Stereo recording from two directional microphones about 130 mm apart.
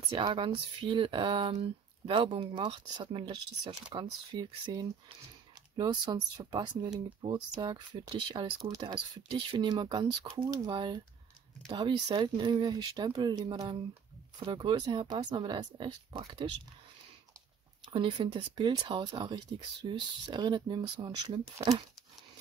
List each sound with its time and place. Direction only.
0.1 s speech: 40° right (ahead or behind)
8.6 s speech: 30° right (ahead or behind)
17.9 s speech: 40° right (ahead or behind)